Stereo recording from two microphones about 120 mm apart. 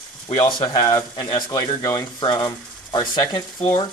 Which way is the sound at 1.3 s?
30° left (ahead or behind).